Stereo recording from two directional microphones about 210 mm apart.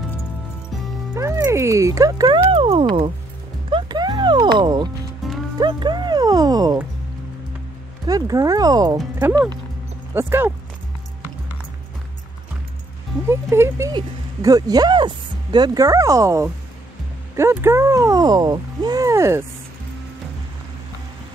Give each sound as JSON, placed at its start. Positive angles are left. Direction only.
{"t": 1.1, "sound": "speech", "side_deg": -15}
{"t": 3.7, "sound": "clip-clop", "side_deg": -20}
{"t": 5.2, "sound": "music", "side_deg": 0}
{"t": 5.6, "sound": "music", "side_deg": -20}
{"t": 8.1, "sound": "speech", "side_deg": -15}
{"t": 13.3, "sound": "speech", "side_deg": -10}